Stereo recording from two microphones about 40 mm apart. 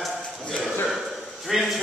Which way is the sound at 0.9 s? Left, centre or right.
Centre.